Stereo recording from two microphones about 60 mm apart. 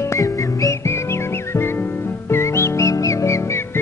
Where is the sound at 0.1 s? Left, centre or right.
Left.